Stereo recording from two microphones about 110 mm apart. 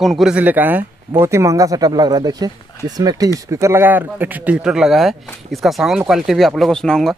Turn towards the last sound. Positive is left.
turn(degrees=5)  # may be behind; listen again after turning